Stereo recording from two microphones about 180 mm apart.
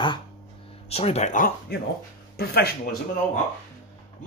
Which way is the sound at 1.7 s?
65° left (ahead or behind).